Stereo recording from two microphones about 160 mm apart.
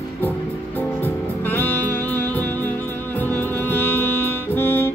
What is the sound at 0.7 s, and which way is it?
Music, 10° left (ahead or behind).